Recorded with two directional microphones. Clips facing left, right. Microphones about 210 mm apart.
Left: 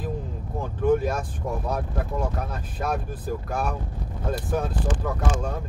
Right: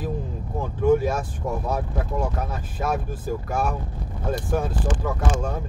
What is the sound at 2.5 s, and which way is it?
Speech, 5° right (ahead or behind).